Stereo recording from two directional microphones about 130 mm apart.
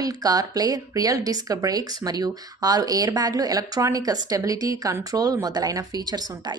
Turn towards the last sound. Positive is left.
turn(degrees=-30)  # may be behind; listen again after turning